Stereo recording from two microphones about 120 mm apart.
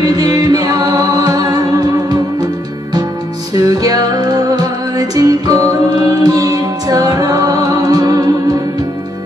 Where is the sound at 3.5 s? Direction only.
30° right (ahead or behind).